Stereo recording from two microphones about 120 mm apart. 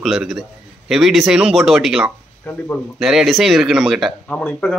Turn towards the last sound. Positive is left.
turn(degrees=10)  # may be behind; listen again after turning